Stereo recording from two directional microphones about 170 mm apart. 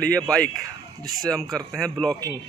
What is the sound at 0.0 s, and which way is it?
Speech, 5° left (ahead or behind).